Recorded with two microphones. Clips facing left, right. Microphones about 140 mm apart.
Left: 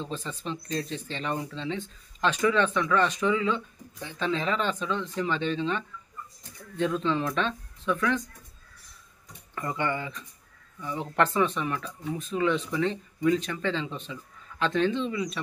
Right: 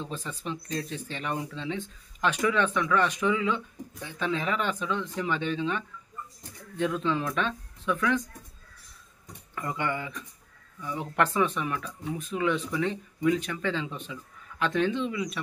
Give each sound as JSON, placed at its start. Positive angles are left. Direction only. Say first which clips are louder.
{"t": 0.0, "sound": "speech", "louder": "left 1 dB", "side_deg": -10}
{"t": 9.6, "sound": "speech", "louder": "left 1 dB", "side_deg": -5}